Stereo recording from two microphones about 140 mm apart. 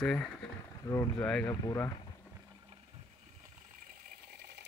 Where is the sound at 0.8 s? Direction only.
20° left (ahead or behind).